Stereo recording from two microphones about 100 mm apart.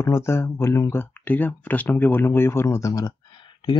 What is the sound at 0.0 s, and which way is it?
Speech, 25° left (ahead or behind).